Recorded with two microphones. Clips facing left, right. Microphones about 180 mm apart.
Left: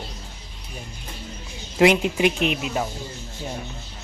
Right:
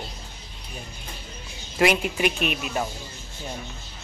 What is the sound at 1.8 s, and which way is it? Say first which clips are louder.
Speech: left 4 dB; 20° left (ahead or behind).